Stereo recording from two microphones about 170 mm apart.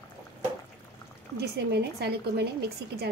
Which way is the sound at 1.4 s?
75° right (ahead or behind).